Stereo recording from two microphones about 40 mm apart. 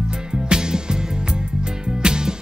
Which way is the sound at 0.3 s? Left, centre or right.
Centre.